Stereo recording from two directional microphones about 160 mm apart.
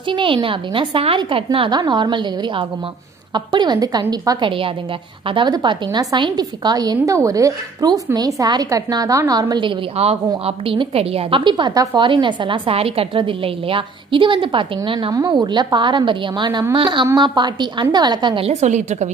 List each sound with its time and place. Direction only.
0.1 s a woman's voice: 30° right (ahead or behind)
18.5 s a woman's voice: 45° right (ahead or behind)